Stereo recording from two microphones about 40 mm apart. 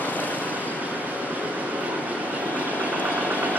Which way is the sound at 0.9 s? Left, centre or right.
Right.